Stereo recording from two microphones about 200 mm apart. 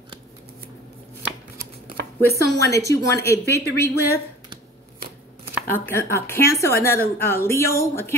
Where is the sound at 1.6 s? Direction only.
50° right (ahead or behind).